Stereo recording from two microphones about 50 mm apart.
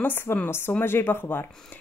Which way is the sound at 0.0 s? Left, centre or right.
Left.